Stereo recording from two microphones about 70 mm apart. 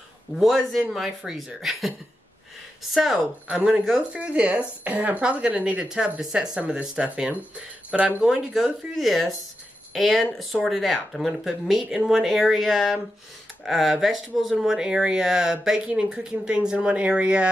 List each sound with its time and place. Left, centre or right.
0.4 s speech: centre
3.4 s speech: centre